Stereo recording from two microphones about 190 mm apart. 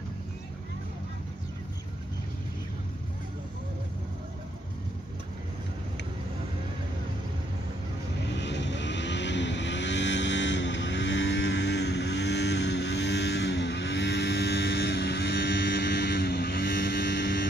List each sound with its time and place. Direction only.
8.3 s vehicle: 65° left (ahead or behind)